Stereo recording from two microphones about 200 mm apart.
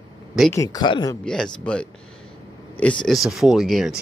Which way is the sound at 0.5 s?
15° left (ahead or behind).